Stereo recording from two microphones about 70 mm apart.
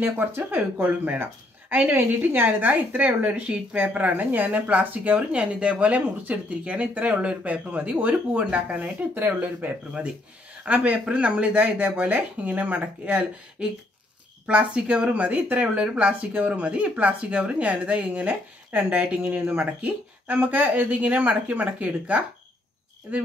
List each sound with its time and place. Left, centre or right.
0.0 s a woman's voice: right